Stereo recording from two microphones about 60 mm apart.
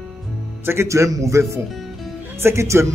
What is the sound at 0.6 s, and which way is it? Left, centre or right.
Speech, right.